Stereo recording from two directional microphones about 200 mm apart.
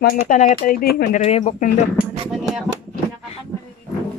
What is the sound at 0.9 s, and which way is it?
Speech, 50° left (ahead or behind).